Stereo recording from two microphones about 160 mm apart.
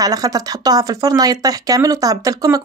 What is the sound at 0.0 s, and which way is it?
Speech, 25° right (ahead or behind).